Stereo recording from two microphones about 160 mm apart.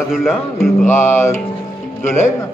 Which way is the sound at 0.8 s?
15° left (ahead or behind).